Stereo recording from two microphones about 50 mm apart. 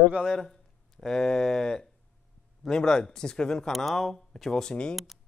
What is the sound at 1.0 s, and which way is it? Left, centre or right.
Speech, centre.